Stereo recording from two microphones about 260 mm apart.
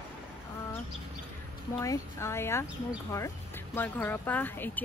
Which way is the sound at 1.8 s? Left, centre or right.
Centre.